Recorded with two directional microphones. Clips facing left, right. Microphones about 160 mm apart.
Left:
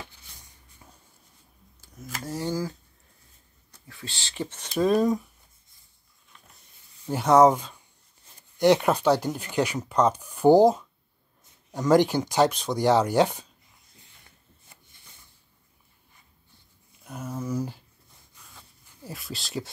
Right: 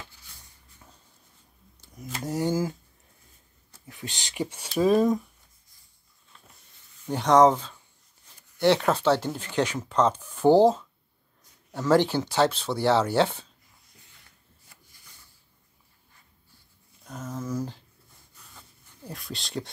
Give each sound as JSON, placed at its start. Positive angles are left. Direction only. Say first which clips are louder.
{"t": 2.1, "sound": "speech", "louder": "right 3 dB", "side_deg": -20}
{"t": 3.8, "sound": "speech", "louder": "right 2 dB", "side_deg": -20}
{"t": 7.1, "sound": "speech", "louder": "left 1 dB", "side_deg": 10}
{"t": 14.7, "sound": "a sound", "louder": "left 1 dB", "side_deg": 25}
{"t": 17.0, "sound": "a sound", "louder": "left 1 dB", "side_deg": 10}
{"t": 19.0, "sound": "speech", "louder": "even", "side_deg": 0}